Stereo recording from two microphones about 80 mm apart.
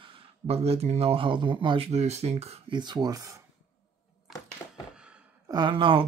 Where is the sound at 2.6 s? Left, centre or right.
Right.